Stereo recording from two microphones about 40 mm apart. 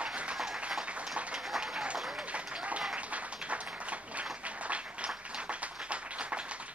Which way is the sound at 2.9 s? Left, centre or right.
Right.